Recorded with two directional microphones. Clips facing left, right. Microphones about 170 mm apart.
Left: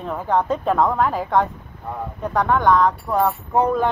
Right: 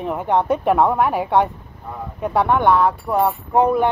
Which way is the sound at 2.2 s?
15° right (ahead or behind).